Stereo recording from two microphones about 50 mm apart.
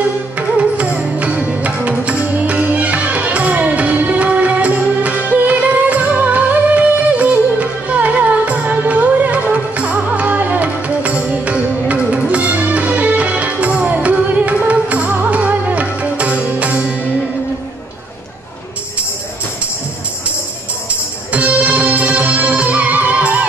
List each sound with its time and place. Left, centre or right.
0.4 s music: right
21.3 s music: right